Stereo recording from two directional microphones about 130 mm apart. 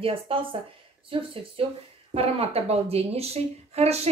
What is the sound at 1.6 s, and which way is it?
A woman's voice, 45° right (ahead or behind).